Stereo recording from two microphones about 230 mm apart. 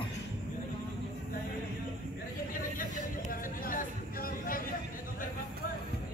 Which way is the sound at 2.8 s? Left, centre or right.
Left.